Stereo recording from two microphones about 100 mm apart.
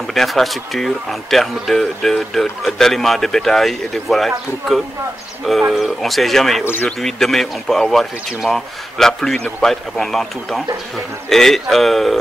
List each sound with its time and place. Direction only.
0.0 s speech: centre (ahead or behind)
5.4 s speech: centre (ahead or behind)
6.6 s speech: 20° left (ahead or behind)
7.0 s speech: 5° left (ahead or behind)